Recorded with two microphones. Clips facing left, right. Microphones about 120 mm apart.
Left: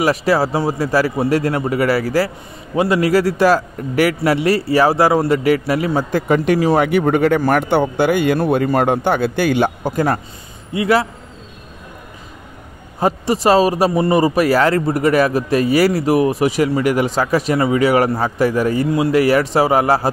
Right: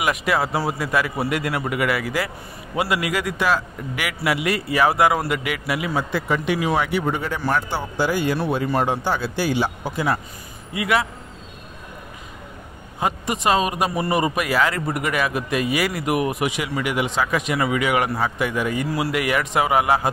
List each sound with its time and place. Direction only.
0.0 s a man's voice: 35° left (ahead or behind)
6.2 s speech: 50° left (ahead or behind)
8.4 s speech: 50° left (ahead or behind)
10.7 s a man's voice: 30° left (ahead or behind)
13.0 s a man's voice: 35° left (ahead or behind)
18.9 s a man's voice: 25° left (ahead or behind)